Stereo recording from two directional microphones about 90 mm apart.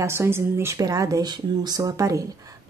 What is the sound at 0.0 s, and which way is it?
Speech, 30° right (ahead or behind).